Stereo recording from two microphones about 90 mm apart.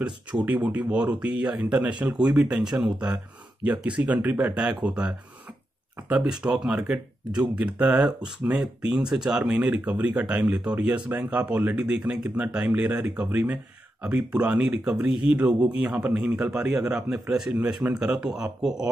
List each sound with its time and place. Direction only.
0.0 s speech: 10° right (ahead or behind)